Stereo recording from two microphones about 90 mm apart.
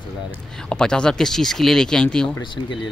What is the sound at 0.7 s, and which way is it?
Speech, 10° left (ahead or behind).